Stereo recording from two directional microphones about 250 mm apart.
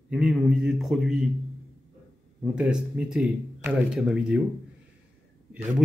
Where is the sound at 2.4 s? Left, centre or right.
Centre.